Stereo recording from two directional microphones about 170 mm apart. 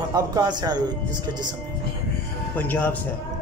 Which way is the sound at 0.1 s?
20° right (ahead or behind).